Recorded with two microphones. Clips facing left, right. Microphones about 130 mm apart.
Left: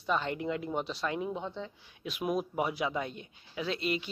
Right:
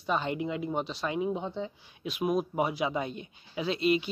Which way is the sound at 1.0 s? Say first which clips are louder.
Right 3 dB; 10° right (ahead or behind).